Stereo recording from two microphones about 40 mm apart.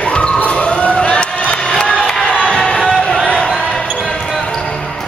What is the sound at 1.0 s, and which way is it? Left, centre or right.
Crowd, left.